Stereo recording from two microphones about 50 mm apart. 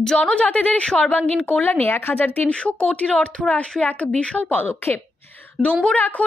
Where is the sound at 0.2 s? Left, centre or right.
Left.